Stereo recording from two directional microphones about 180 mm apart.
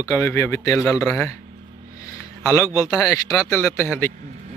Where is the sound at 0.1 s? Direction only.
15° left (ahead or behind).